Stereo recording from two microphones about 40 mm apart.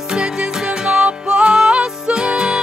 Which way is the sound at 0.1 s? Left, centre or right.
Right.